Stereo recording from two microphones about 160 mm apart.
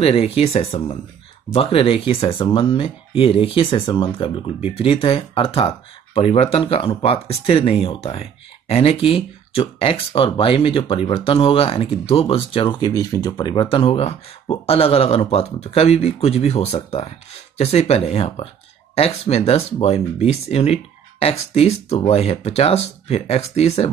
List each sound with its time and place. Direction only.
0.0 s speech: 40° left (ahead or behind)